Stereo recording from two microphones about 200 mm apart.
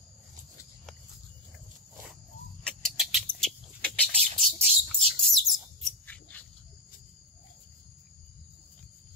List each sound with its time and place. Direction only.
2.6 s bird: centre (ahead or behind)
6.3 s wild animals: 10° left (ahead or behind)